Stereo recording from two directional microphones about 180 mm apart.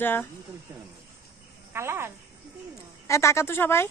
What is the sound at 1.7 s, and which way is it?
Speech, 15° right (ahead or behind).